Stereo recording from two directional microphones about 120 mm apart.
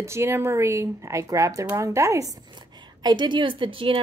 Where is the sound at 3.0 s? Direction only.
40° right (ahead or behind).